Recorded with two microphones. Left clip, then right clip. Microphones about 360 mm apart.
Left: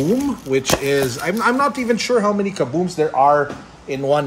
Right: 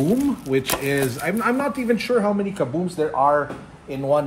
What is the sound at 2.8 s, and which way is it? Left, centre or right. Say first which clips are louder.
Speech: left 5 dB; left.